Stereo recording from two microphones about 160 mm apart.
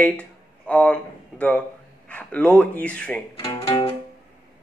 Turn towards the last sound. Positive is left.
turn(degrees=35)  # may be behind; listen again after turning